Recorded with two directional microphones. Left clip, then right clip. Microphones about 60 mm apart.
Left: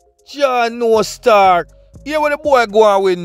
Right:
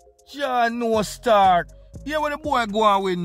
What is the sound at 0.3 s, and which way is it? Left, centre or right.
Speech, left.